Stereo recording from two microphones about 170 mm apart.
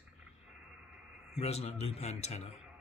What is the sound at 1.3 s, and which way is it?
Speech, 35° left (ahead or behind).